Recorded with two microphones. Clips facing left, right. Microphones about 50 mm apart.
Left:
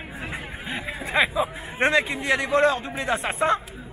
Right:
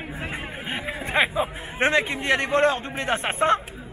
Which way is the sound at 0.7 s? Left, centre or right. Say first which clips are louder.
Even; right.